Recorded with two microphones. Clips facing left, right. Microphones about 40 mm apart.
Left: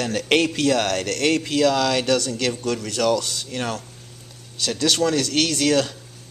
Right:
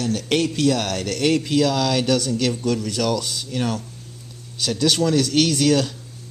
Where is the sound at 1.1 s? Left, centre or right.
Centre.